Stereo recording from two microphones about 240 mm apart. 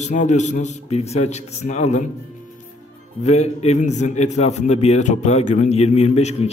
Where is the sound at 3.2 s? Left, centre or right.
Left.